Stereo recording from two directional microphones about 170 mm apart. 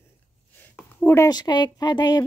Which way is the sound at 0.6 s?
10° left (ahead or behind).